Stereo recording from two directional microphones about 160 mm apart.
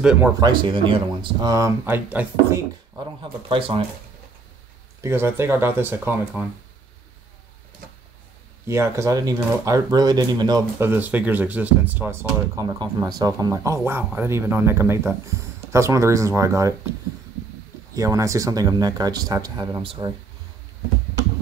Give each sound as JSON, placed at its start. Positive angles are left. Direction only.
{"t": 0.0, "sound": "speech", "side_deg": -5}
{"t": 0.4, "sound": "speech", "side_deg": -30}
{"t": 3.0, "sound": "speech", "side_deg": -30}
{"t": 5.0, "sound": "speech", "side_deg": -15}
{"t": 8.6, "sound": "speech", "side_deg": -15}
{"t": 10.8, "sound": "speech", "side_deg": -10}
{"t": 12.6, "sound": "speech", "side_deg": -25}
{"t": 17.9, "sound": "speech", "side_deg": -20}